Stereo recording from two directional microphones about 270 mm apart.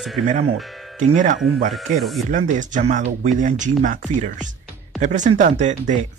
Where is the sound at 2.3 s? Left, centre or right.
Right.